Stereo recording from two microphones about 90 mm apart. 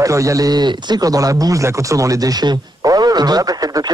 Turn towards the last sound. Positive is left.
turn(degrees=-50)  # may be behind; listen again after turning